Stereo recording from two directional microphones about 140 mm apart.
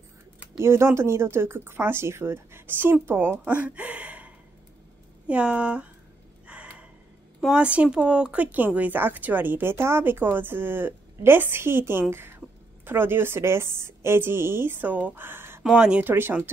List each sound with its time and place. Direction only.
0.6 s speech: 20° right (ahead or behind)
6.4 s gasp: 10° right (ahead or behind)
7.3 s speech: 5° right (ahead or behind)